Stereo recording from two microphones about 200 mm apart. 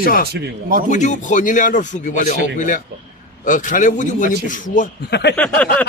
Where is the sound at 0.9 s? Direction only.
35° left (ahead or behind); by 5.3 s 55° left (ahead or behind).